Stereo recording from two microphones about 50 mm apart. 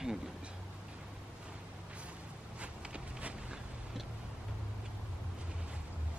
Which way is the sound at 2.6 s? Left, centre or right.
Right.